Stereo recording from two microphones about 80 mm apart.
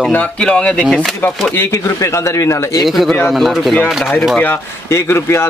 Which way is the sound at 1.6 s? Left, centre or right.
Left.